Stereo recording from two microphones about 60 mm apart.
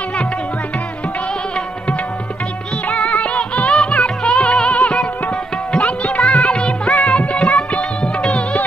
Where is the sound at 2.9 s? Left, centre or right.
Centre.